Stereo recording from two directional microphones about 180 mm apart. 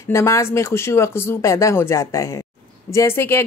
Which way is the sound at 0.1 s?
15° left (ahead or behind).